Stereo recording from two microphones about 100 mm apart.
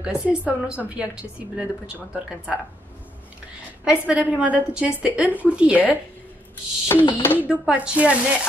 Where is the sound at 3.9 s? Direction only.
10° right (ahead or behind).